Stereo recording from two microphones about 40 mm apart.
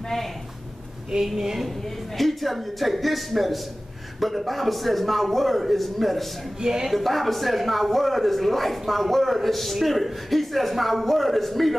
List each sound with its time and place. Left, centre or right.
1.1 s speech: centre
2.1 s speech: centre
6.6 s speech: centre
6.9 s speech: centre